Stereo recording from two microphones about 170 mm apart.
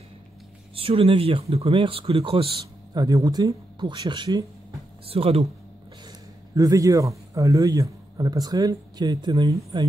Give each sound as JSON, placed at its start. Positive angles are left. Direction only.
{"t": 0.7, "sound": "a man's voice", "side_deg": -35}
{"t": 6.0, "sound": "a man's voice", "side_deg": -20}